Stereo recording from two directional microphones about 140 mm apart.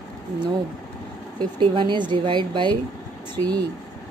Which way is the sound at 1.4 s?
35° right (ahead or behind).